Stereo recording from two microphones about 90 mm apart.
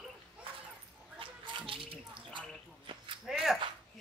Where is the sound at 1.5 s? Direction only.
70° right (ahead or behind).